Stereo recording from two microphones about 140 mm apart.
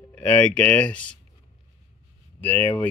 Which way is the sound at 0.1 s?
10° left (ahead or behind).